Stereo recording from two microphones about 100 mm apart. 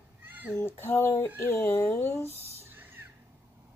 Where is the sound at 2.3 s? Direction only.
25° right (ahead or behind).